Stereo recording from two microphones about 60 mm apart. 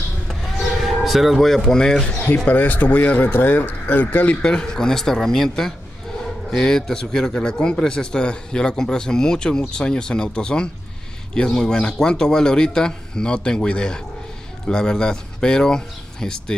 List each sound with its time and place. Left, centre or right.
0.3 s a sound: centre
2.2 s speech: left
4.4 s a man's voice: centre